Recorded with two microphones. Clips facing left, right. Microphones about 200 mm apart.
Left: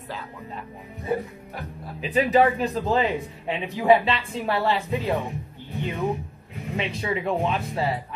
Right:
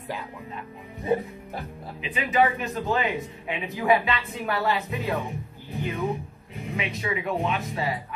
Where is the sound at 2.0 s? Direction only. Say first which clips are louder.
Left 4 dB; 40° left (ahead or behind).